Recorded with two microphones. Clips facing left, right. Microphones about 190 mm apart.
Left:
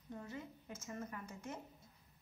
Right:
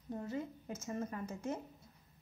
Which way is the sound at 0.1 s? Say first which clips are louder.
Right 7 dB; 30° right (ahead or behind).